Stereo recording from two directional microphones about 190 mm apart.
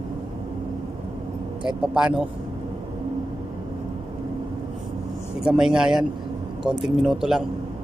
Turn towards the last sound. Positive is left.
turn(degrees=0)  # may be behind; listen again after turning